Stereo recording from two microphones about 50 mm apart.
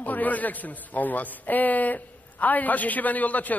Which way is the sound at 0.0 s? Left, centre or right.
Left.